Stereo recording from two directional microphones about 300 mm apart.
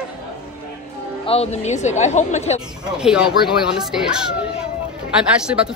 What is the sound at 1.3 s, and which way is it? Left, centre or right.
Speech, left.